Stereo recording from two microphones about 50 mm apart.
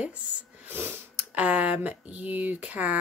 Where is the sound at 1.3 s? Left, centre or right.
Right.